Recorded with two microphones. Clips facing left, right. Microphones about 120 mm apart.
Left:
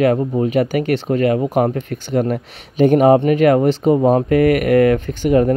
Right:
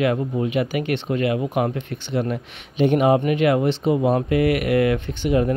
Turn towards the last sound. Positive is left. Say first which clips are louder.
# left 6 dB
turn(degrees=45)  # may be behind; listen again after turning